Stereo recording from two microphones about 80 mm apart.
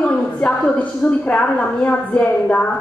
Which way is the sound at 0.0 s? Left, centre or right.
Centre.